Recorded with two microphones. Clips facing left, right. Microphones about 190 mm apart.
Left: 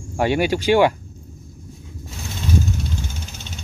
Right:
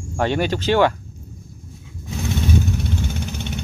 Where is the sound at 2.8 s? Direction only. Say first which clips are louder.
Right 5 dB; 60° right (ahead or behind).